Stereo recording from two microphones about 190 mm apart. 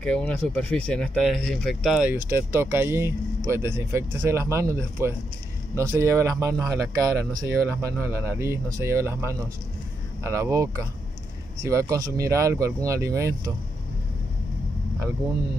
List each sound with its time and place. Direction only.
0.0 s speech: 5° left (ahead or behind); by 13.5 s 15° right (ahead or behind)